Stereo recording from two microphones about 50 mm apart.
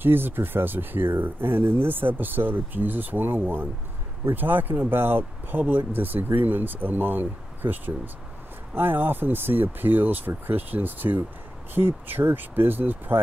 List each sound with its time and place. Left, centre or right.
0.0 s speech: right